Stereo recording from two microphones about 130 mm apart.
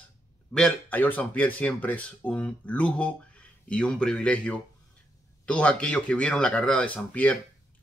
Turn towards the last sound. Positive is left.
turn(degrees=10)  # may be behind; listen again after turning